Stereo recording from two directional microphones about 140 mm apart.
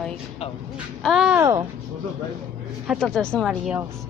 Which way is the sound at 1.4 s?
25° right (ahead or behind).